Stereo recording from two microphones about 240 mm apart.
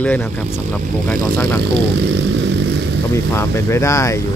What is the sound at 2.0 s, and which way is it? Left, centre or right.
Vehicle, right.